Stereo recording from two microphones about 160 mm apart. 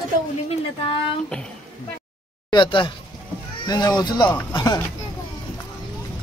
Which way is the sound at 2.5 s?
30° left (ahead or behind).